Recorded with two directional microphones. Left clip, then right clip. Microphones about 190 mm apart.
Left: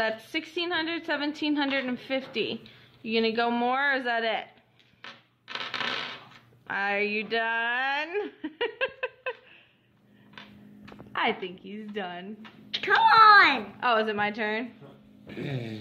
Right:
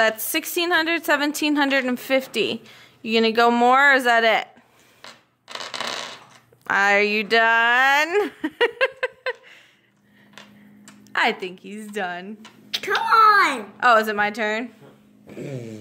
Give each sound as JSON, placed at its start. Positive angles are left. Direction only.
{"t": 0.0, "sound": "a woman's voice", "side_deg": -70}
{"t": 5.0, "sound": "a sound", "side_deg": -10}
{"t": 6.7, "sound": "speech", "side_deg": -70}
{"t": 11.4, "sound": "a woman's voice", "side_deg": -65}
{"t": 12.8, "sound": "a child's voice", "side_deg": -20}
{"t": 13.7, "sound": "a woman's voice", "side_deg": -65}